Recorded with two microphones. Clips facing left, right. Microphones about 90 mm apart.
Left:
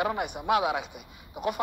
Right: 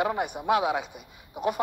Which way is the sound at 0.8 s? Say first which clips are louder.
Right 1 dB; 40° right (ahead or behind).